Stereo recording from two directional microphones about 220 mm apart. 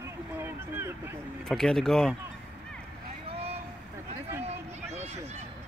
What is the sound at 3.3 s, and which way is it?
Boat, 25° right (ahead or behind).